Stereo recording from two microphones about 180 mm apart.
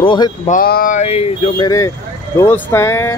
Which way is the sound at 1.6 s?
20° left (ahead or behind).